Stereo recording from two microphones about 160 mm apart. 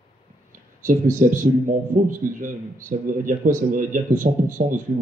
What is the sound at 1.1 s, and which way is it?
Speech, 55° right (ahead or behind).